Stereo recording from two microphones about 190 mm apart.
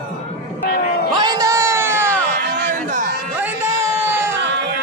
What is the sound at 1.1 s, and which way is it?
Music, 20° right (ahead or behind).